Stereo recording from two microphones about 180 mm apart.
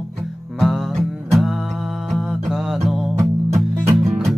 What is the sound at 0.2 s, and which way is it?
Music, centre (ahead or behind).